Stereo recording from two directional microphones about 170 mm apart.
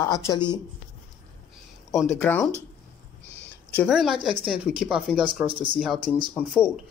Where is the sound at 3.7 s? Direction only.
Centre (ahead or behind).